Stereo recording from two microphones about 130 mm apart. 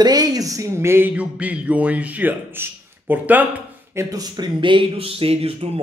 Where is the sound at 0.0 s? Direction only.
30° right (ahead or behind).